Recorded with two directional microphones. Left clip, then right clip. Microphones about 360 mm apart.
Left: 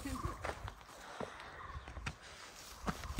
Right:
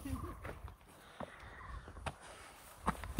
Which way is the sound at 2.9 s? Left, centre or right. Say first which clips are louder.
Right 4 dB; centre.